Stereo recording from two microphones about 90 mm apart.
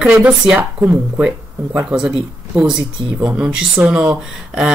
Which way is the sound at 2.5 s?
10° right (ahead or behind).